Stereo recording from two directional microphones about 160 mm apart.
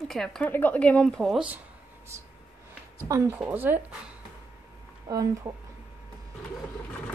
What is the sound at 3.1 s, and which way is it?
Speech, 15° right (ahead or behind).